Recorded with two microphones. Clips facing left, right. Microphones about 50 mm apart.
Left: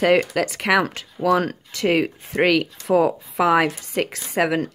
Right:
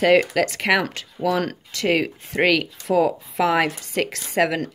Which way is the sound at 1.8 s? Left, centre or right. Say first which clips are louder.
Left 1 dB; left.